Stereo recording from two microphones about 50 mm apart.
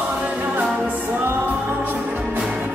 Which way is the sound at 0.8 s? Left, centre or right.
Right.